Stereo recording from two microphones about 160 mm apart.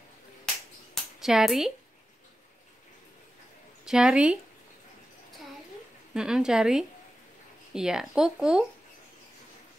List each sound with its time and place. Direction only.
1.2 s speech: centre (ahead or behind)
3.8 s speech: 5° right (ahead or behind)
6.1 s speech: 5° right (ahead or behind)